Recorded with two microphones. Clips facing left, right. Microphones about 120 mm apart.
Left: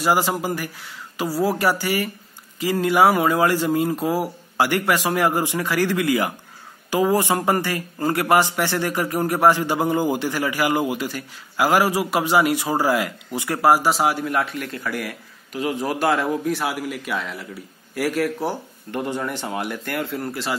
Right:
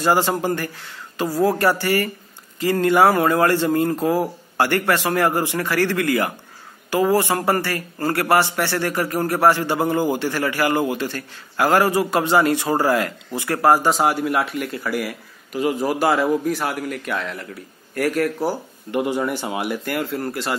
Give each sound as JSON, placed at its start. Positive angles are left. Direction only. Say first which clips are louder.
{"t": 0.0, "sound": "a man's voice", "louder": "right 2 dB", "side_deg": 10}